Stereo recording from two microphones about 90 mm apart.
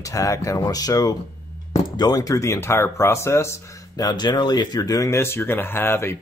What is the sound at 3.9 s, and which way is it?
Speech, 50° left (ahead or behind).